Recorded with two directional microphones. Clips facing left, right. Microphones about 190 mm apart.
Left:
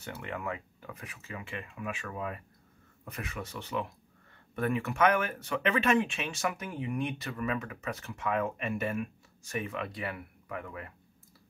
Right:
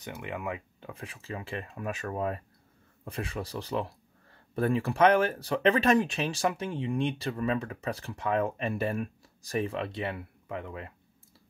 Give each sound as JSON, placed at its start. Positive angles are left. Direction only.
{"t": 0.0, "sound": "speech", "side_deg": -15}